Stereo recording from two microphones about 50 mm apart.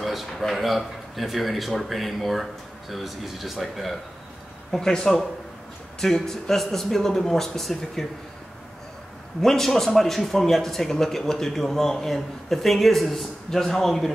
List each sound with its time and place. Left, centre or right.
0.0 s a man's voice: centre
9.4 s a man's voice: centre